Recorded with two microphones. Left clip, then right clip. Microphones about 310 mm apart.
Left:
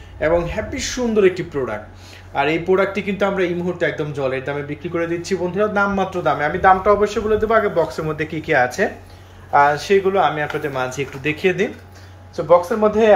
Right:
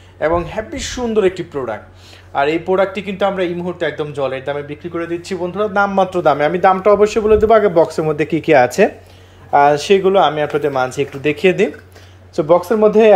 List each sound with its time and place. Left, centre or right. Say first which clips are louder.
0.2 s speech: right 1 dB; centre; by 13.1 s right